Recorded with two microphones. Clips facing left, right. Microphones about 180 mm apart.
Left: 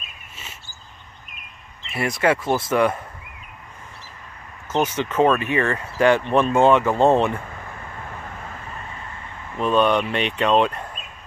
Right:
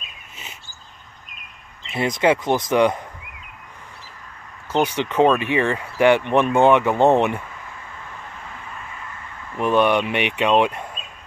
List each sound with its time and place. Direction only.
1.9 s speech: 20° right (ahead or behind)
4.7 s speech: 15° right (ahead or behind)
9.6 s speech: 15° right (ahead or behind)